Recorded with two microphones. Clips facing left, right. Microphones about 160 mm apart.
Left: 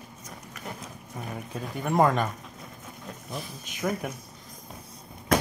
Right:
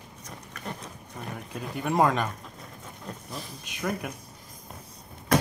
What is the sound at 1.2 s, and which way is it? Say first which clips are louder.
Speech: even; centre (ahead or behind).